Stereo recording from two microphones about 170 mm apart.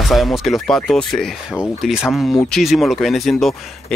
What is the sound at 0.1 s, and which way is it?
Speech, centre (ahead or behind).